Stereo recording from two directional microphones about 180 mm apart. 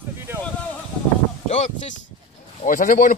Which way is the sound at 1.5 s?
40° left (ahead or behind).